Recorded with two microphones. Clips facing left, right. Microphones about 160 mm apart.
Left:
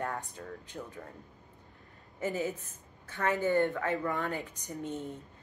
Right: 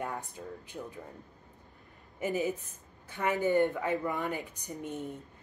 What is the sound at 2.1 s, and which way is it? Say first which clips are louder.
Speech: right 2 dB; 15° right (ahead or behind).